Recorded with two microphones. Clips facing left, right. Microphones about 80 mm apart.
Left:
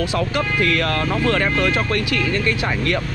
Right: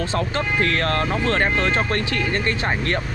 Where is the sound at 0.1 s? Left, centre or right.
Right.